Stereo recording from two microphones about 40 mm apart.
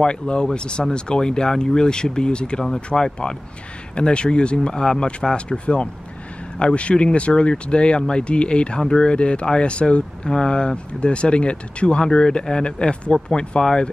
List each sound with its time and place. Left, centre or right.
0.0 s speech: left